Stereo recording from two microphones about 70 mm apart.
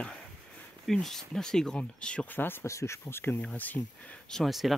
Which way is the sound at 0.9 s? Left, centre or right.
Centre.